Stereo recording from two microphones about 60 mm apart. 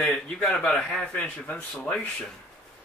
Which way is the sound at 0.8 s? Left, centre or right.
Centre.